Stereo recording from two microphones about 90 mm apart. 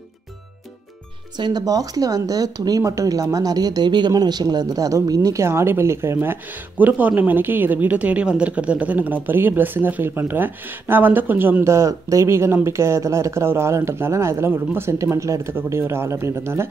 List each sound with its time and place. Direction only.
1.3 s speech: 50° right (ahead or behind); by 16.6 s 30° right (ahead or behind)